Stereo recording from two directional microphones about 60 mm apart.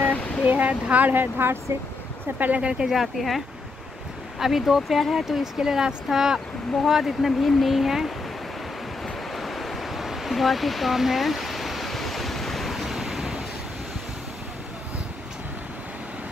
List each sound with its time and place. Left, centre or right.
0.5 s speech: right
2.6 s speech: centre
9.0 s waves: centre